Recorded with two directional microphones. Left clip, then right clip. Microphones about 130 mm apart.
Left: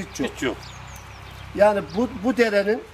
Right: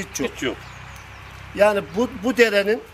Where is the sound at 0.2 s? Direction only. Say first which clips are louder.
Even; 15° left (ahead or behind).